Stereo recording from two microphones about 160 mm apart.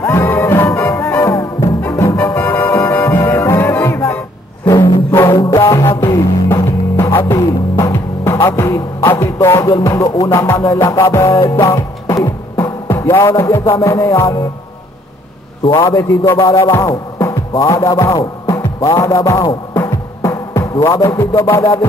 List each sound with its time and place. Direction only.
0.0 s music: 15° left (ahead or behind)
13.7 s a man's voice: 20° left (ahead or behind)
15.6 s a man's voice: 25° left (ahead or behind)
16.5 s music: 20° left (ahead or behind)